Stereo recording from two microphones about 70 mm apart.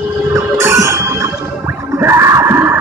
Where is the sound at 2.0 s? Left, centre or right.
Right.